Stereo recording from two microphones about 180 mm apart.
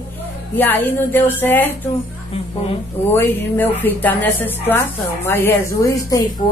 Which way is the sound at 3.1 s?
10° left (ahead or behind).